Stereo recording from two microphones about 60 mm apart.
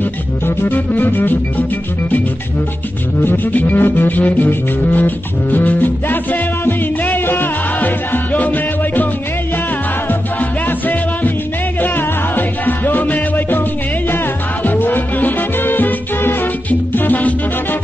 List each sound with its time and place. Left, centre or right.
0.6 s music: left
3.2 s music: left
12.4 s music: left
14.1 s salsa music: left
16.9 s music: left